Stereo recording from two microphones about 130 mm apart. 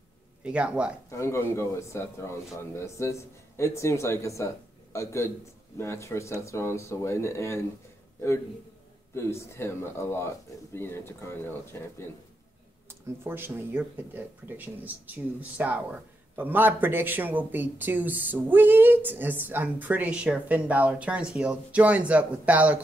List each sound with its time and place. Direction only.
0.4 s speech: 10° right (ahead or behind)
1.1 s a man's voice: 20° left (ahead or behind)
9.1 s a man's voice: 20° left (ahead or behind)
12.8 s speech: 15° right (ahead or behind)